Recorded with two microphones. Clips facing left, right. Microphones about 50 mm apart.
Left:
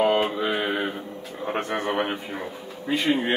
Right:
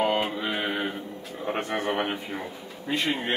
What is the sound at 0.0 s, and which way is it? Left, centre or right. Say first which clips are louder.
Speech: left 4 dB; centre.